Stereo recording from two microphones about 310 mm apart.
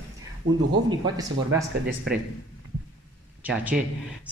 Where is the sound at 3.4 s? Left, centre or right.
Centre.